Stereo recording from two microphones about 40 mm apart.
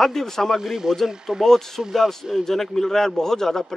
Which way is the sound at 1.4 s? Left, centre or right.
Centre.